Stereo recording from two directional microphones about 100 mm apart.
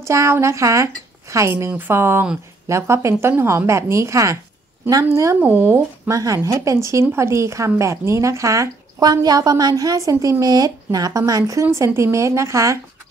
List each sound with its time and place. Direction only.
0.0 s a woman's voice: 30° right (ahead or behind)